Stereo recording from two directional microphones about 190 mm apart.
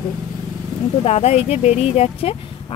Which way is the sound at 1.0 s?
35° left (ahead or behind).